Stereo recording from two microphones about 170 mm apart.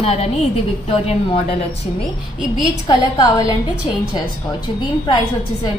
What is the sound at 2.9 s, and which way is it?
Speech, 25° left (ahead or behind).